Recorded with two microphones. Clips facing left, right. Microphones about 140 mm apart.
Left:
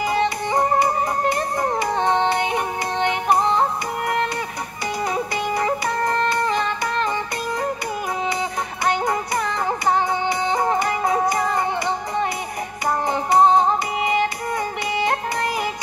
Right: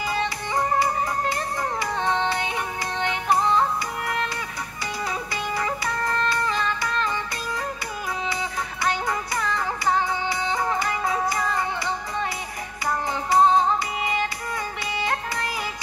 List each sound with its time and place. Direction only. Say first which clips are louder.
0.0 s music: left 6 dB; 50° left (ahead or behind)
3.3 s music: even; 20° left (ahead or behind)
5.0 s music: left 6 dB; 45° left (ahead or behind)
6.1 s music: left 4 dB; 50° left (ahead or behind)
8.3 s music: left 4 dB; 50° left (ahead or behind)